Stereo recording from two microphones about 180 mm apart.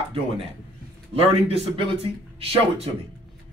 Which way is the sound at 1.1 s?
35° right (ahead or behind).